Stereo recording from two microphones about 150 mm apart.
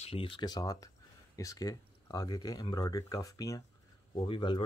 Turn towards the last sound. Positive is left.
turn(degrees=35)  # may be behind; listen again after turning